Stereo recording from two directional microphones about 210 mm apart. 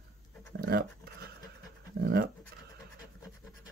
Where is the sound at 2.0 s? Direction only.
50° right (ahead or behind).